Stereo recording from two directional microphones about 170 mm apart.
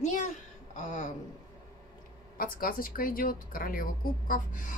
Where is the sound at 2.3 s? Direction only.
60° left (ahead or behind).